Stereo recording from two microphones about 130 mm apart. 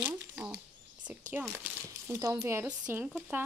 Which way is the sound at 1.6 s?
20° right (ahead or behind).